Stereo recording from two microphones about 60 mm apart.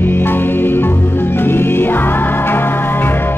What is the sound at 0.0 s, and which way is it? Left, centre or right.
Music, left.